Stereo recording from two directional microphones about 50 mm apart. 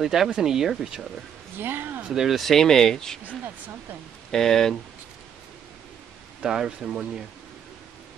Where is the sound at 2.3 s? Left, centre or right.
Centre.